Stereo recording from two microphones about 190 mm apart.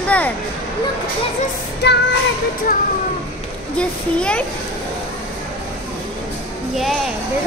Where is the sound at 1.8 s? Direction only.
60° left (ahead or behind).